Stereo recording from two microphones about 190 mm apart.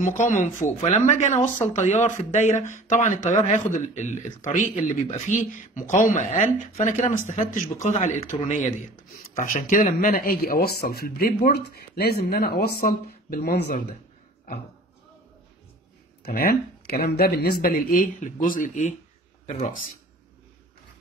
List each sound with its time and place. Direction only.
0.0 s speech: 40° left (ahead or behind); by 13.8 s 60° left (ahead or behind)
16.2 s speech: 50° left (ahead or behind)